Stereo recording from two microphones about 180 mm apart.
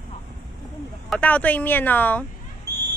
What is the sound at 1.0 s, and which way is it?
Speech, 10° left (ahead or behind).